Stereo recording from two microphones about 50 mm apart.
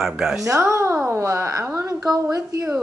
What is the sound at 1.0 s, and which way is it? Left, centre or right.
Speech, right.